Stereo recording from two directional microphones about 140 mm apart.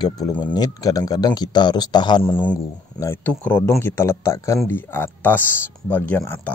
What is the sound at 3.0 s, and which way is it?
Speech, 15° left (ahead or behind).